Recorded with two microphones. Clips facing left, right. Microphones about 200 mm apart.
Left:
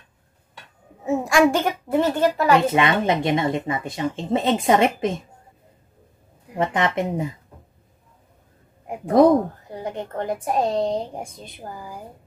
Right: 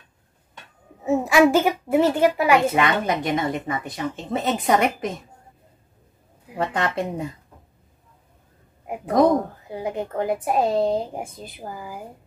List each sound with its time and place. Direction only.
1.0 s a woman's voice: centre (ahead or behind)
2.7 s speech: 25° left (ahead or behind)
6.6 s speech: 20° left (ahead or behind)
9.7 s speech: 5° right (ahead or behind)